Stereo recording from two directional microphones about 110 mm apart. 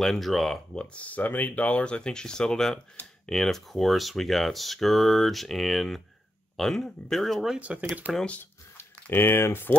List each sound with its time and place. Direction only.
0.0 s speech: 5° left (ahead or behind)
7.5 s speech: 10° right (ahead or behind)
8.1 s speech: 5° left (ahead or behind)
8.4 s speech: 20° left (ahead or behind)